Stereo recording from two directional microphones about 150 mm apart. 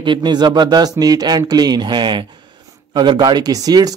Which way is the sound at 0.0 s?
30° right (ahead or behind).